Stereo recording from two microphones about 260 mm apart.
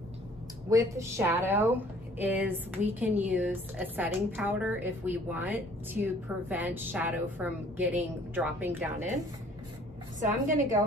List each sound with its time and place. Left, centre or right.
0.7 s a woman's voice: centre
10.2 s a woman's voice: right